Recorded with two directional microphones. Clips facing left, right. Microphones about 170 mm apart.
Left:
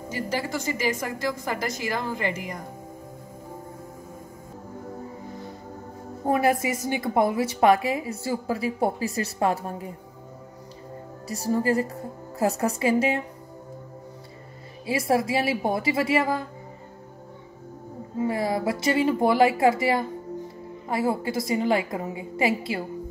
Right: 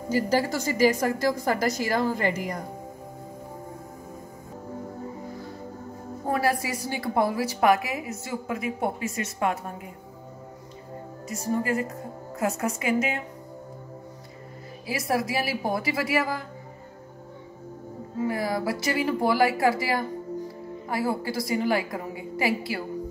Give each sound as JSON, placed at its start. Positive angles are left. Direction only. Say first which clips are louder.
{"t": 0.1, "sound": "a woman's voice", "louder": "right 5 dB", "side_deg": -35}
{"t": 6.2, "sound": "a woman's voice", "louder": "left 3 dB", "side_deg": 20}
{"t": 11.2, "sound": "a woman's voice", "louder": "left 3 dB", "side_deg": 35}
{"t": 14.9, "sound": "a woman's voice", "louder": "left 4 dB", "side_deg": 25}
{"t": 18.2, "sound": "a woman's voice", "louder": "left 2 dB", "side_deg": 25}